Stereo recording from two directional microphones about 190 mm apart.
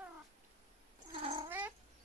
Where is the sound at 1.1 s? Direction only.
30° right (ahead or behind).